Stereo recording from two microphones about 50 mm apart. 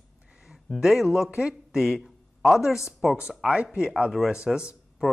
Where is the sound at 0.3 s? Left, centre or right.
Centre.